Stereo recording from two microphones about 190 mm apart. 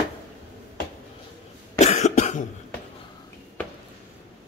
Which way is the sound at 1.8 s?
35° left (ahead or behind).